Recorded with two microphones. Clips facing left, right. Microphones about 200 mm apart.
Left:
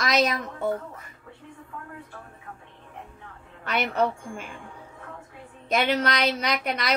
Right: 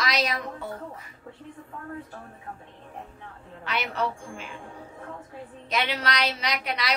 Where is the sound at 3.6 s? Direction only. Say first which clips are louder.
Left 4 dB; 50° left (ahead or behind).